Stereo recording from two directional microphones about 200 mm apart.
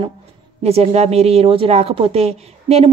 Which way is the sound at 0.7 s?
30° right (ahead or behind).